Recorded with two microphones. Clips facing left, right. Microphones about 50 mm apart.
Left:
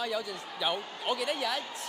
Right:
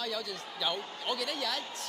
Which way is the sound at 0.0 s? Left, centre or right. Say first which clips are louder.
Left 3 dB; centre.